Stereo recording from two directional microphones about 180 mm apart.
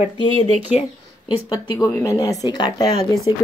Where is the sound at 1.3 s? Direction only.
30° left (ahead or behind).